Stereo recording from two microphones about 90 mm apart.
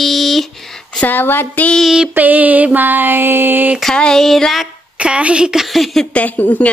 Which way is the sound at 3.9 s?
5° left (ahead or behind).